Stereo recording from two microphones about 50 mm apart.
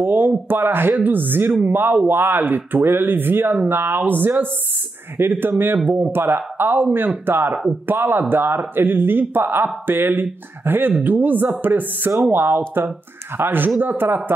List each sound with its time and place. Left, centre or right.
0.0 s a woman's voice: right